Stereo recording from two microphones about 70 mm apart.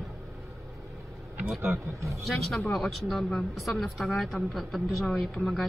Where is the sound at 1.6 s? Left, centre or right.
Right.